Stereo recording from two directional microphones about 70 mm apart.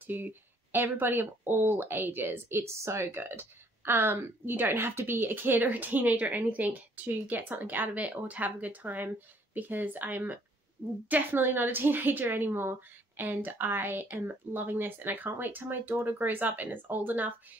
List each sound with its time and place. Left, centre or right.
0.0 s speech: right